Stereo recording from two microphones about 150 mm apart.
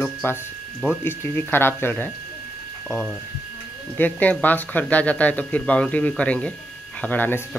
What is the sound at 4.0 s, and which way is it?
A man's voice, 10° left (ahead or behind).